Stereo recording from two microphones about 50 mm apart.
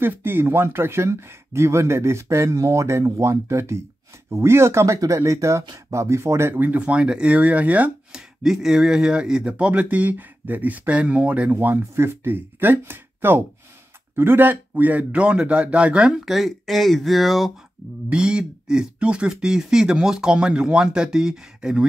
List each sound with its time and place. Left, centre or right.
0.0 s speech: right
6.5 s speech: right
6.9 s speech: right
8.1 s speech: centre; by 11.7 s right
11.7 s speech: right
16.3 s speech: centre
18.1 s speech: centre